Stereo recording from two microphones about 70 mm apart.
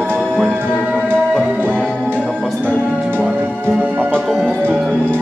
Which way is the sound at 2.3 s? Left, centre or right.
Centre.